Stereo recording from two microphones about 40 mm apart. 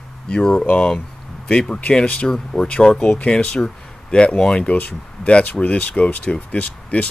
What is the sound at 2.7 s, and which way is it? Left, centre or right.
Speech, left.